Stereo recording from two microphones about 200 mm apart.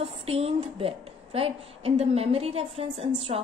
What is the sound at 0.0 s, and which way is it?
A woman's voice, 30° right (ahead or behind).